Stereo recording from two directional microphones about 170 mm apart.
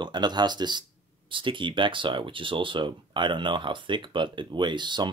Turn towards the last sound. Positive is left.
turn(degrees=-25)  # may be behind; listen again after turning